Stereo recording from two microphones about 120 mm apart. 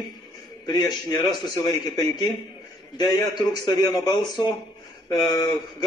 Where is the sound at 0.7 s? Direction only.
35° left (ahead or behind).